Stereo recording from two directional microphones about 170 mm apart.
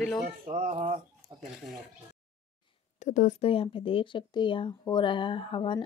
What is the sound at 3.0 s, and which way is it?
Speech, 45° left (ahead or behind).